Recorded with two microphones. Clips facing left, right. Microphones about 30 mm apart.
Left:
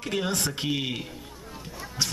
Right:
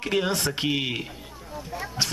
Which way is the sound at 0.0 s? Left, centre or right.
Right.